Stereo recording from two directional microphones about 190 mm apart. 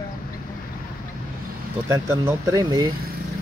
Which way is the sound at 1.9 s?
15° right (ahead or behind).